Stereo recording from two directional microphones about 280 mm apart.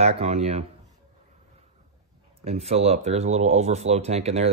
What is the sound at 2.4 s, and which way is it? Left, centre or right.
Speech, right.